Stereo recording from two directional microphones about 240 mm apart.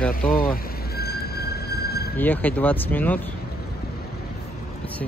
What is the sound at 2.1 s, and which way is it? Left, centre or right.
Speech, centre.